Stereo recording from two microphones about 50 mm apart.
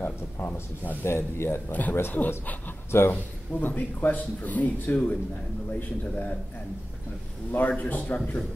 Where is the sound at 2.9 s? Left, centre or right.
Left.